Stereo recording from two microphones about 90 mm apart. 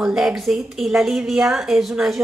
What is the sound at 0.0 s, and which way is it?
A woman's voice, 5° right (ahead or behind).